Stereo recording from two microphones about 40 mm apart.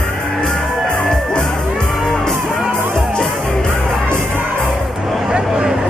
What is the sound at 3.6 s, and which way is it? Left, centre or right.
Music, centre.